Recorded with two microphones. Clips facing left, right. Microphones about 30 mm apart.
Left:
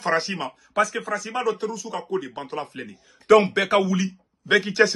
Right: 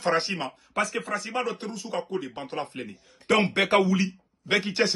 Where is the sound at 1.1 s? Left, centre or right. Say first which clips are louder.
Left 4 dB; right.